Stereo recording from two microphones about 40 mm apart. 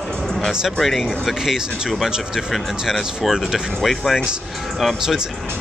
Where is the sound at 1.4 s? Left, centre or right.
Centre.